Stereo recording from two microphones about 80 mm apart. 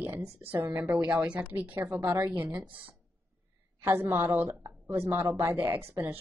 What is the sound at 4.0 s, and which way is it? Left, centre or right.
A woman's voice, right.